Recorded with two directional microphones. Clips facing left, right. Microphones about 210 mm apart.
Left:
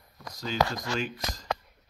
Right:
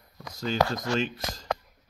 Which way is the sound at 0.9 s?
25° right (ahead or behind).